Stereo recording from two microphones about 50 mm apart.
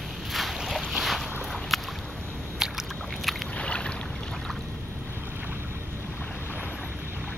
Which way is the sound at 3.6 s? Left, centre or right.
Left.